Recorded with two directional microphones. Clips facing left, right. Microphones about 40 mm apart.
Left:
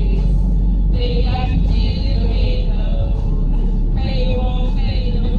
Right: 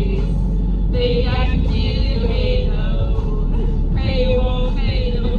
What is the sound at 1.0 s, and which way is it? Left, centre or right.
Music, right.